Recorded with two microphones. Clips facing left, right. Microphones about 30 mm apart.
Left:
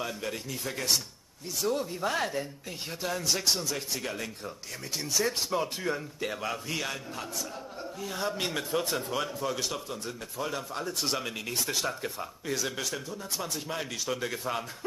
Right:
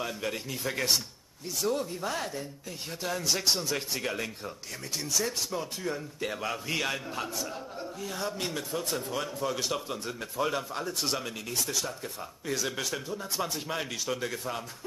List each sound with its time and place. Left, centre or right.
0.0 s speech: centre
4.9 s speech: centre
5.2 s speech: centre
6.2 s speech: centre
8.0 s speech: centre
11.6 s speech: left
12.4 s speech: centre